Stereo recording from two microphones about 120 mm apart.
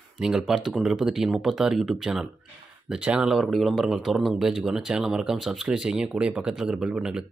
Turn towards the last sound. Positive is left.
turn(degrees=-5)  # may be behind; listen again after turning